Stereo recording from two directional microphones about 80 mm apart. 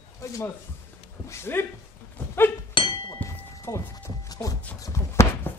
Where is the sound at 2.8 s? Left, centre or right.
Left.